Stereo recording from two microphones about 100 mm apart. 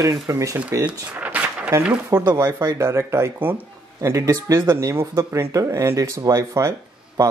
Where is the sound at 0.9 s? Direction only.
15° right (ahead or behind).